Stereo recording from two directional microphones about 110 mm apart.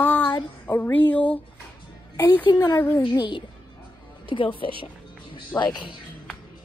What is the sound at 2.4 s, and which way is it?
A woman's voice, 40° left (ahead or behind).